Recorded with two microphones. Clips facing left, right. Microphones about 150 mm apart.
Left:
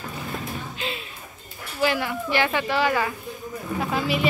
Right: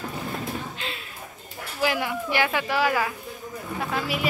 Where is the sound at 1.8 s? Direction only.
10° right (ahead or behind).